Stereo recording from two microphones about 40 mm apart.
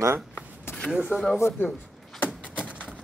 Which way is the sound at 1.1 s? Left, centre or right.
Left.